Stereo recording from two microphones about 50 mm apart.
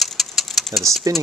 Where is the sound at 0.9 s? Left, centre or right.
Right.